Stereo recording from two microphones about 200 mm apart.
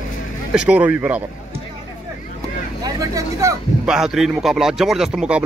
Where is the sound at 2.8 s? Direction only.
15° right (ahead or behind).